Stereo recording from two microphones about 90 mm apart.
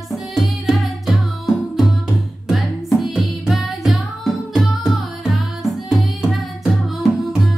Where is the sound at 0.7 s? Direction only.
Centre (ahead or behind).